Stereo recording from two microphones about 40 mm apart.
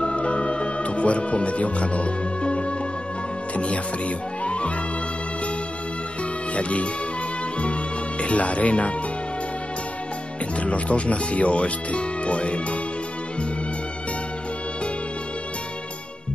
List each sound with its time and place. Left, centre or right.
0.0 s music: left
3.5 s speech: left
4.5 s music: left
6.5 s speech: left
8.2 s speech: left
10.6 s speech: left